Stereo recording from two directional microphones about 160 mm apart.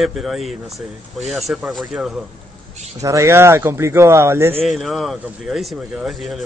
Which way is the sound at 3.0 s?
20° right (ahead or behind).